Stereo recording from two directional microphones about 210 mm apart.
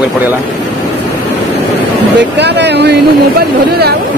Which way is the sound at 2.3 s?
55° right (ahead or behind).